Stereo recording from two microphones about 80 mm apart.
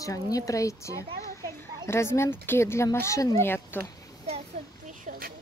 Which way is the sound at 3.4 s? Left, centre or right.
Left.